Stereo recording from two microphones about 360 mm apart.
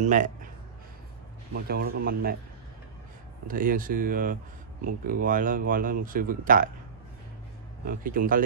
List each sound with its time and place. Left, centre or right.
0.0 s speech: right
1.5 s speech: right
3.4 s speech: right
7.8 s speech: right